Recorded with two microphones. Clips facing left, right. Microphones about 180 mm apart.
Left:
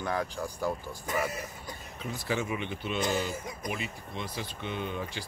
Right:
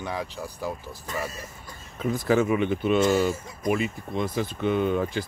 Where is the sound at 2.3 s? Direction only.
50° right (ahead or behind).